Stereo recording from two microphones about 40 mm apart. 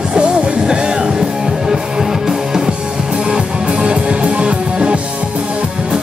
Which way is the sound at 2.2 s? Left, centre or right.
Centre.